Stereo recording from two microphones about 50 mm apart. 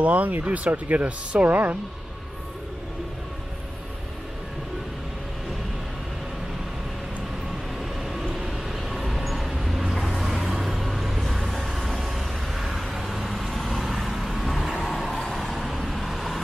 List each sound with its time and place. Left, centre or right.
0.0 s speech: right
8.0 s vehicle: centre